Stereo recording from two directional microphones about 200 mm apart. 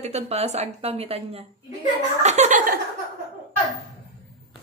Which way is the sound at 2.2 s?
35° right (ahead or behind).